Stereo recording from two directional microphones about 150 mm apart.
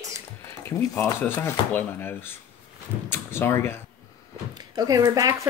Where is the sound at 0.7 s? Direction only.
15° left (ahead or behind).